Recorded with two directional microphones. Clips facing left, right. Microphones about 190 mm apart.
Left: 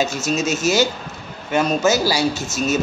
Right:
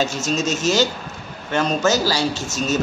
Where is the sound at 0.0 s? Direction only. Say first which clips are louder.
Left 1 dB; 10° left (ahead or behind).